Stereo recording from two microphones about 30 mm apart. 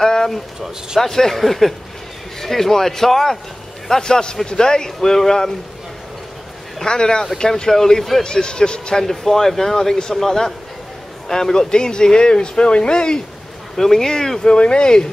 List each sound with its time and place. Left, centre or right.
0.0 s a sound: centre
1.0 s speech: centre
3.9 s speech: left
6.8 s speech: left
8.2 s speech: left
8.9 s speech: centre; by 13.2 s left
13.7 s speech: centre
14.4 s speech: left